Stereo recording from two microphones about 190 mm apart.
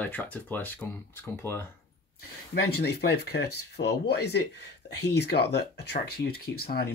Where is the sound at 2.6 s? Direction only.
60° left (ahead or behind).